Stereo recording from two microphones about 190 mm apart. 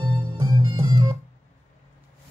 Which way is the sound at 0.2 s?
20° right (ahead or behind).